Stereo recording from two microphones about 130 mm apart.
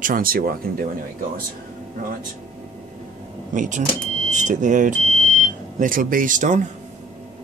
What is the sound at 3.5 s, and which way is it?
Speech, 70° right (ahead or behind).